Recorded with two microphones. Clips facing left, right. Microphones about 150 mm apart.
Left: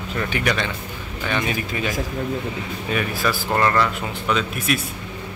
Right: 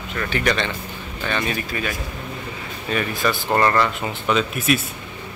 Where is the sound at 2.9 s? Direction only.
5° left (ahead or behind).